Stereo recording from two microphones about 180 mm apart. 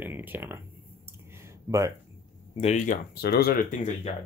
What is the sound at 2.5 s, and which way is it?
Speech, 40° left (ahead or behind).